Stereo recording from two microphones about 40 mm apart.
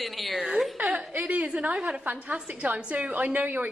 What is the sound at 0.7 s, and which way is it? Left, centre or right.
Speech, right.